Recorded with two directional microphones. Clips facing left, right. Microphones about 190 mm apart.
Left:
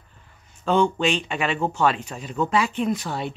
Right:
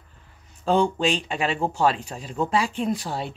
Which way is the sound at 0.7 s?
35° right (ahead or behind).